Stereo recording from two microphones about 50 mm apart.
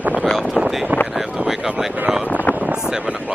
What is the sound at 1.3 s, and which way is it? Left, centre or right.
Speech, centre.